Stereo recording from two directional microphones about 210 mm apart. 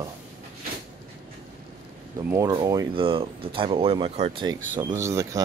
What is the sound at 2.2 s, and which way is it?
Speech, 15° right (ahead or behind).